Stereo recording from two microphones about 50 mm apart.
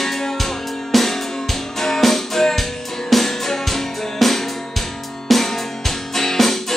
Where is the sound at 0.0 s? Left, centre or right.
Centre.